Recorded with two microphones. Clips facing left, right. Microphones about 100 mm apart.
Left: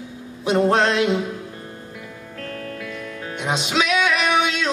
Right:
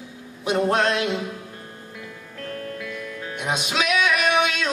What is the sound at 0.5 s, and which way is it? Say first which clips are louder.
Music: left 3 dB; 30° left (ahead or behind).